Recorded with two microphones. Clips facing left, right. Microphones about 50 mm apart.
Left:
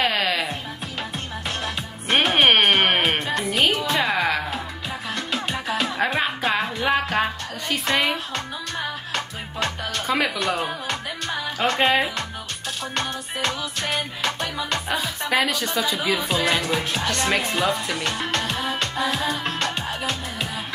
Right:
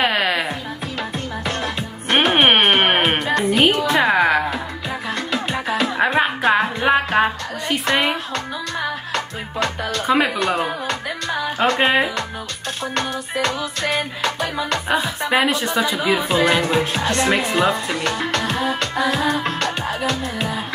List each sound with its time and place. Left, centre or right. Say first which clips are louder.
0.0 s music: right 3 dB; right
1.6 s music: right 4 dB; right
4.1 s music: right 6 dB; right
5.9 s music: right 7 dB; right
8.7 s music: right 4 dB; right
10.0 s music: right 5 dB; right
11.8 s speech: right 1 dB; right
12.8 s music: right 5 dB; right
14.9 s speech: right 6 dB; right
16.1 s music: right 6 dB; right